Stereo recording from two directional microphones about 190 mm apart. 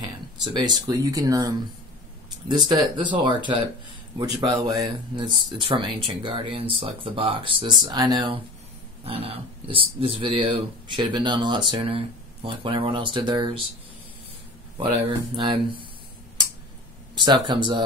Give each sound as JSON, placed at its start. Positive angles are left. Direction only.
{"t": 0.0, "sound": "speech", "side_deg": -25}
{"t": 14.8, "sound": "speech", "side_deg": -25}
{"t": 17.1, "sound": "speech", "side_deg": -25}